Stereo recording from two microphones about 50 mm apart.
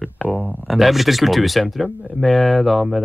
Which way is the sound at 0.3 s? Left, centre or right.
Right.